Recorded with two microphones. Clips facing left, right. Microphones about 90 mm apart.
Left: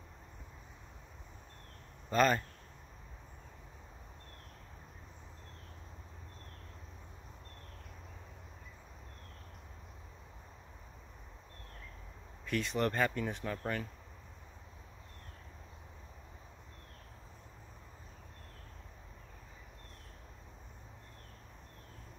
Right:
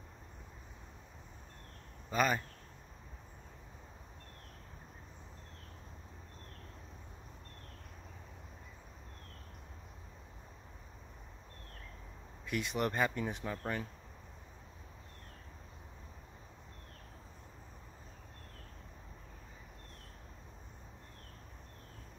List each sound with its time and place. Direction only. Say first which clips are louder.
2.0 s speech: left 3 dB; 5° right (ahead or behind)
12.4 s speech: left 2 dB; 15° right (ahead or behind)